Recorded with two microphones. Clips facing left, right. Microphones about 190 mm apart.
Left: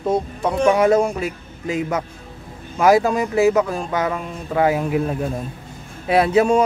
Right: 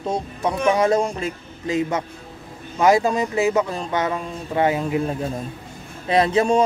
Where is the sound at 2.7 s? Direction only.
20° right (ahead or behind).